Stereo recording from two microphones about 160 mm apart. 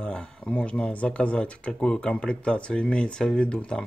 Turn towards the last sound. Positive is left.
turn(degrees=5)  # may be behind; listen again after turning